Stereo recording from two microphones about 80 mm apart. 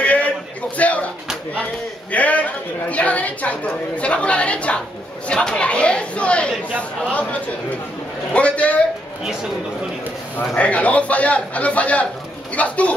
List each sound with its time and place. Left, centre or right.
0.0 s a sound: centre
2.1 s a woman's voice: centre
10.5 s a woman's voice: centre